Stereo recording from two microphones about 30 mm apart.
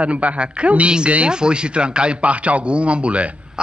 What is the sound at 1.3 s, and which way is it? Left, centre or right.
Speech, right.